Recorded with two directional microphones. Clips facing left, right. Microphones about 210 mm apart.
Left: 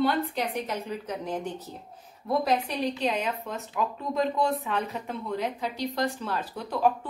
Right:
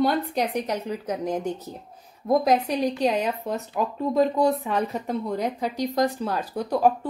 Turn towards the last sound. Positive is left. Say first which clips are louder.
# right 5 dB
turn(degrees=-40)  # may be behind; listen again after turning